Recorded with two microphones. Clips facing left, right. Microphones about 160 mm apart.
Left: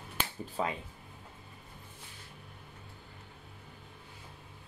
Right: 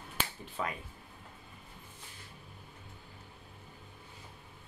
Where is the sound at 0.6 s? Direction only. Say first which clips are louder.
Left 3 dB; 30° left (ahead or behind).